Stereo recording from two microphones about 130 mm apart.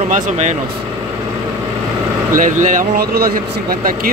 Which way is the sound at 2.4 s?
80° right.